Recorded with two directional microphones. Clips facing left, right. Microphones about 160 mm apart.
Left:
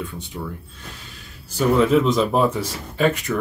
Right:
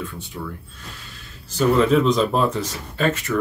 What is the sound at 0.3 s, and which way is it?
Speech, 25° left (ahead or behind).